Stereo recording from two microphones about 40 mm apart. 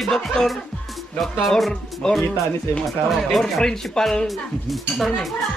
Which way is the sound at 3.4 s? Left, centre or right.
Centre.